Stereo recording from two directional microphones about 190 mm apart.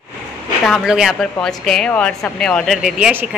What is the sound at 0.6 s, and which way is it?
Speech, centre (ahead or behind).